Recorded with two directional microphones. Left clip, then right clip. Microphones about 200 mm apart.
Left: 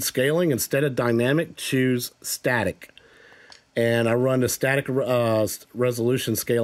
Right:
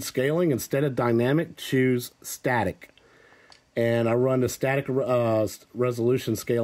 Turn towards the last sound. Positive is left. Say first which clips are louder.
# left 2 dB
turn(degrees=20)  # may be behind; listen again after turning